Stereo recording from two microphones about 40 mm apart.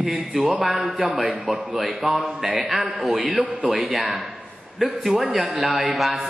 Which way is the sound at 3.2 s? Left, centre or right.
Right.